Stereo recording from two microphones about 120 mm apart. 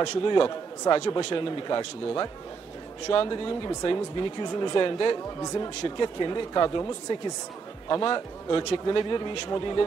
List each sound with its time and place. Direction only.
0.0 s speech: 40° left (ahead or behind)
5.5 s speech: 30° left (ahead or behind)
7.9 s speech: 35° left (ahead or behind)